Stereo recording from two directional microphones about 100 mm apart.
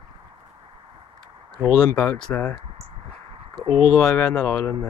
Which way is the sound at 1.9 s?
10° left (ahead or behind).